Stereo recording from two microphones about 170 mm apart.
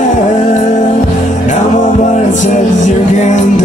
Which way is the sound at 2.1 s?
45° left (ahead or behind).